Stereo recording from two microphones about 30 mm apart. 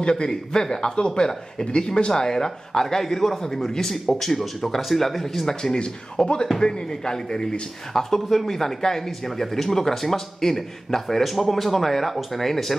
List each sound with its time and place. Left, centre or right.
0.0 s speech: left; by 5.5 s centre
5.5 s speech: centre
5.8 s speech: left
7.9 s speech: centre